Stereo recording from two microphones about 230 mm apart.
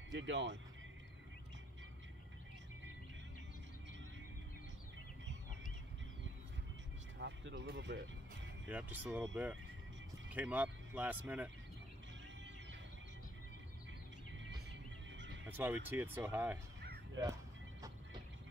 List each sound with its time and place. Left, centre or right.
0.1 s speech: right
7.2 s speech: right
8.6 s speech: centre
14.4 s music: right
15.4 s speech: centre
16.8 s a sound: right